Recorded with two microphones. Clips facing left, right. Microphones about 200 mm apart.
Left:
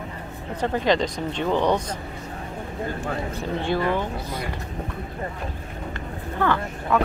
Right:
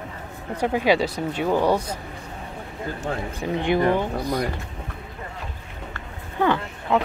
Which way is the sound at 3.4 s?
15° right (ahead or behind).